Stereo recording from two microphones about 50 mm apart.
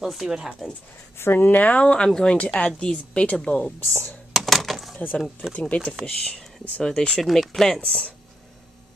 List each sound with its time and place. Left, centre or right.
0.0 s speech: centre
1.1 s speech: left; by 2.3 s centre
2.3 s speech: left
3.8 s speech: left
4.3 s a sound: centre
5.5 s speech: left
6.2 s speech: centre
7.2 s speech: centre